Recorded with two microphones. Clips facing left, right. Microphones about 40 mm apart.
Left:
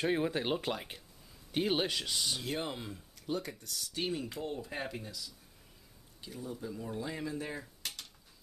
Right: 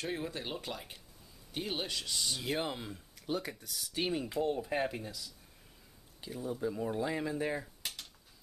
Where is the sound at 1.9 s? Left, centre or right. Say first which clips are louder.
Left 2 dB; centre.